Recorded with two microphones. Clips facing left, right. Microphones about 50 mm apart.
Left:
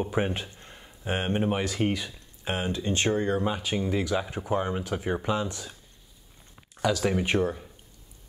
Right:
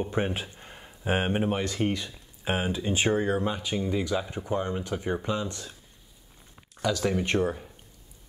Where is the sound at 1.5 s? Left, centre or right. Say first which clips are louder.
Left 1 dB; centre.